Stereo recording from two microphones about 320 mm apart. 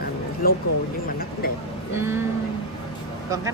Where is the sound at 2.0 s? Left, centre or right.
Centre.